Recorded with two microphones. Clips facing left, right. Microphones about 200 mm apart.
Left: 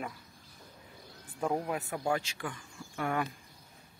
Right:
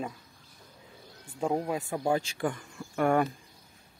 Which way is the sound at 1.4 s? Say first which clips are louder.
Right 3 dB; 20° right (ahead or behind).